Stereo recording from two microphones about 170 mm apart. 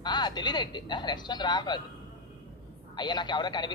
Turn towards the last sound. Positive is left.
turn(degrees=25)  # may be behind; listen again after turning